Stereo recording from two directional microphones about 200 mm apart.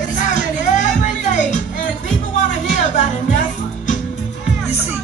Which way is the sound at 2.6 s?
40° left (ahead or behind).